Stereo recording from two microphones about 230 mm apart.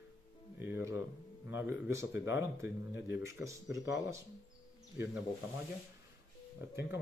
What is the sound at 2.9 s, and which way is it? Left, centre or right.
Speech, left.